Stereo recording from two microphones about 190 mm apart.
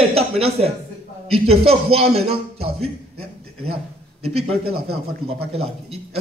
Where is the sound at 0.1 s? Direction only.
30° right (ahead or behind).